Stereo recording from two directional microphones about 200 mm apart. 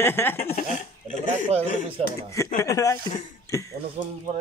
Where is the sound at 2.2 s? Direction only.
15° left (ahead or behind).